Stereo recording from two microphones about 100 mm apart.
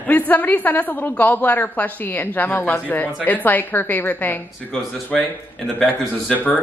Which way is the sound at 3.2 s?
15° left (ahead or behind).